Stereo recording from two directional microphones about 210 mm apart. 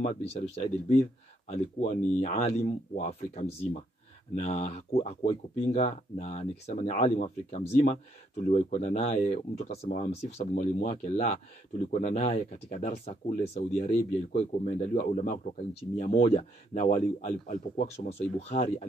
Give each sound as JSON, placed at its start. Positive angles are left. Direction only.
{"t": 0.0, "sound": "speech", "side_deg": 30}